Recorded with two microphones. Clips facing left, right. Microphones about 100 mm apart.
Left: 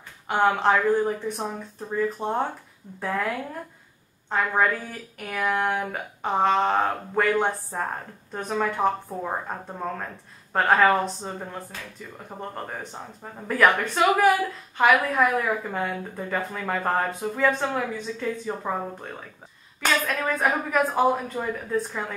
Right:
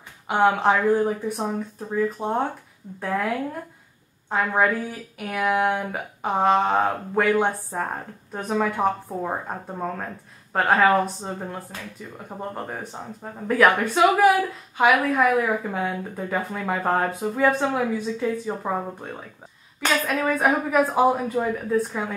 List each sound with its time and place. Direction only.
0.3 s speech: 10° right (ahead or behind)
4.3 s a woman's voice: 5° right (ahead or behind)
12.3 s a woman's voice: 5° right (ahead or behind)